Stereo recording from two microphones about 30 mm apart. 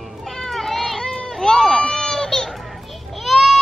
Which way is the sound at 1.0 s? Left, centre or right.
Centre.